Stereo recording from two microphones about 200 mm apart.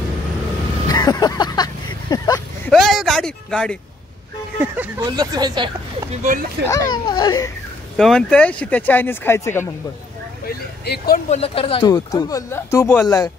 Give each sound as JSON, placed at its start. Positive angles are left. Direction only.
{"t": 0.8, "sound": "a sound", "side_deg": 20}
{"t": 2.7, "sound": "a sound", "side_deg": 0}
{"t": 4.6, "sound": "speech", "side_deg": -10}
{"t": 5.0, "sound": "speech", "side_deg": -20}
{"t": 6.2, "sound": "speech", "side_deg": -45}
{"t": 6.9, "sound": "a child's voice", "side_deg": 20}
{"t": 8.0, "sound": "speech", "side_deg": 5}
{"t": 10.4, "sound": "speech", "side_deg": 50}
{"t": 11.2, "sound": "speech", "side_deg": 30}